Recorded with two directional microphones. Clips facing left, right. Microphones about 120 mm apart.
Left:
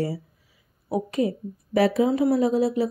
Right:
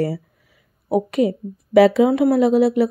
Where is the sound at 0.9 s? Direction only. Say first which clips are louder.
Right 6 dB; 85° right.